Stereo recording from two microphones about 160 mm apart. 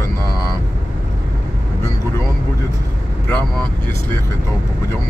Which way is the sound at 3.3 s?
10° left (ahead or behind).